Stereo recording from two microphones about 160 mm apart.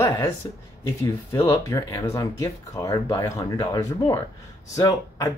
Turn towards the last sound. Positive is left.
turn(degrees=20)  # may be behind; listen again after turning